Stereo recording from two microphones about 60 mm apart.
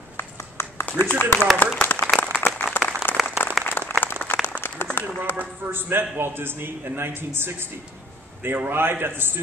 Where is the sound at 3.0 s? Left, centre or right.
Left.